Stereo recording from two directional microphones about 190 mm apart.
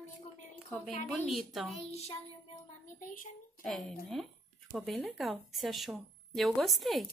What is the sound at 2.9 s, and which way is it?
Speech, 45° left (ahead or behind).